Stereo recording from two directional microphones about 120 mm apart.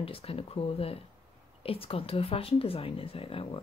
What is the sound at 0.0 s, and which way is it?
Speech, 50° left (ahead or behind).